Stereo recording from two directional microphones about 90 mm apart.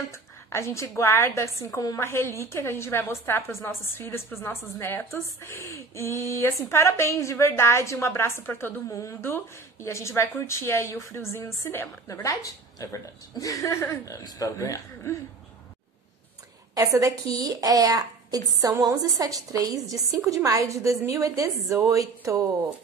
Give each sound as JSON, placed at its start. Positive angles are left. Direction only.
{"t": 0.1, "sound": "a woman's voice", "side_deg": 30}
{"t": 12.2, "sound": "a woman's voice", "side_deg": 40}
{"t": 16.7, "sound": "a woman's voice", "side_deg": -40}